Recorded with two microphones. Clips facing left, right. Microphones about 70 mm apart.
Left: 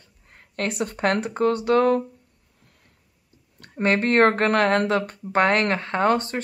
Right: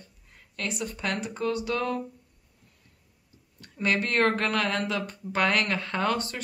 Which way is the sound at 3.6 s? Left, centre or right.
Left.